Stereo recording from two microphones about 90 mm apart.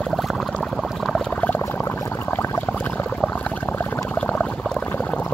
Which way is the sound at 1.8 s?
30° left (ahead or behind).